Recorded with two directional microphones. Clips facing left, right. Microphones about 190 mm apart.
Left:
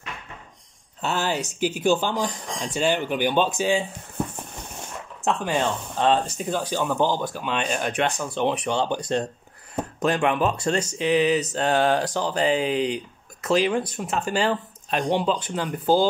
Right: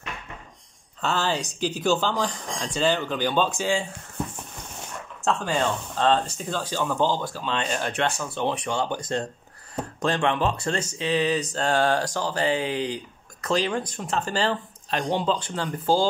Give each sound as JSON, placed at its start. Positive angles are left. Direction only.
{"t": 1.0, "sound": "speech", "side_deg": 15}
{"t": 5.2, "sound": "speech", "side_deg": 15}